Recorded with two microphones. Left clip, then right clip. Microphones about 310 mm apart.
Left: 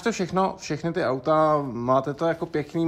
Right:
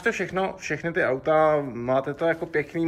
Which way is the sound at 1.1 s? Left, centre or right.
Centre.